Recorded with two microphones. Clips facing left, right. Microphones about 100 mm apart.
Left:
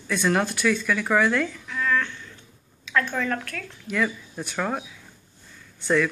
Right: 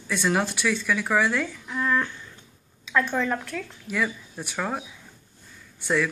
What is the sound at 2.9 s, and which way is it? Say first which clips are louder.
A woman's voice: right 1 dB; 5° right (ahead or behind).